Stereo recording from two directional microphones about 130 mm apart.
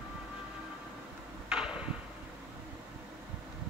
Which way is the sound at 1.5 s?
5° right (ahead or behind).